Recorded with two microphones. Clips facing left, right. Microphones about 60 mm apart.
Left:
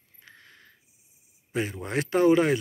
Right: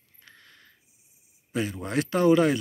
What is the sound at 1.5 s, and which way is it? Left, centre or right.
Speech, left.